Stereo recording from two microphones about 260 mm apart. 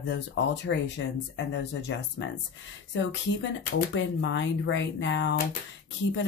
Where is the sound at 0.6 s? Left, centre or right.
Left.